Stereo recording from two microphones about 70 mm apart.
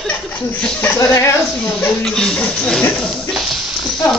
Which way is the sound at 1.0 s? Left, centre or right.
Left.